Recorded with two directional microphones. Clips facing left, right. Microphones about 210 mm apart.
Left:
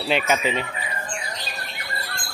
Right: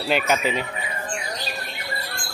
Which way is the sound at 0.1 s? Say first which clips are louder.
Even; centre (ahead or behind).